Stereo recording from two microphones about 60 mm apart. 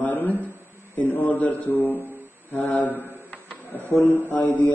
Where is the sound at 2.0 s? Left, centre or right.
Left.